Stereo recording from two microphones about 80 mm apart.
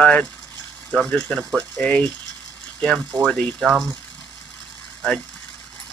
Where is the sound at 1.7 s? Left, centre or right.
Centre.